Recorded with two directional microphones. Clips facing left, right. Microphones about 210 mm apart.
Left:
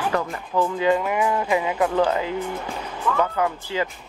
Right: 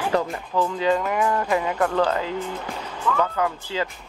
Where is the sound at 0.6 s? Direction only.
15° left (ahead or behind).